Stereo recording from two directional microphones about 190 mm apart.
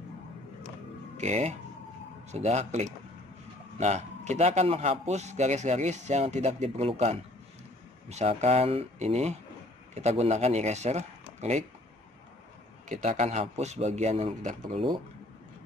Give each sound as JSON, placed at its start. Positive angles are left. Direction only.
{"t": 1.1, "sound": "a man's voice", "side_deg": -35}
{"t": 12.8, "sound": "a man's voice", "side_deg": -40}